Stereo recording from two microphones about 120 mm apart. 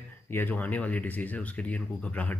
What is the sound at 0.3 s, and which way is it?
Speech, 15° left (ahead or behind).